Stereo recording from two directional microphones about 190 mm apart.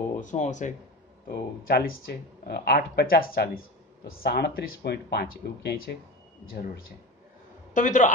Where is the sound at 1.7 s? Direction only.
55° left (ahead or behind).